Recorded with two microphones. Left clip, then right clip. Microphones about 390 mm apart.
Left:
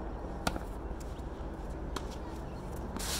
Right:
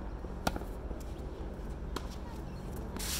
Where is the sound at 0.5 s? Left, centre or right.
Centre.